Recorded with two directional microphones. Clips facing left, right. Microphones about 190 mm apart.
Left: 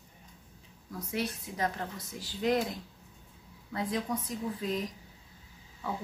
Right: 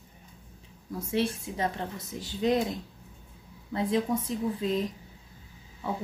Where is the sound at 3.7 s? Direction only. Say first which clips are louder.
Right 6 dB; 25° right (ahead or behind).